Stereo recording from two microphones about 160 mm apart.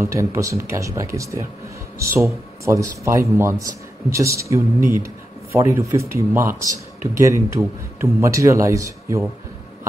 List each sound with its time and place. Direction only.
0.0 s a man's voice: 20° right (ahead or behind)